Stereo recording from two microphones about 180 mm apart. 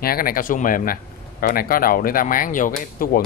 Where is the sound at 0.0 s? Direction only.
55° left (ahead or behind).